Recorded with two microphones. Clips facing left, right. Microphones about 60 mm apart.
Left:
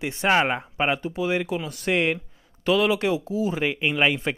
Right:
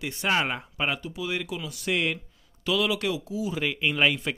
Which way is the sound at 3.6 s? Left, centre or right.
Left.